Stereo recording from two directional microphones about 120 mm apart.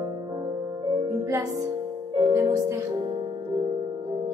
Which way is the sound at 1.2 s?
30° right (ahead or behind).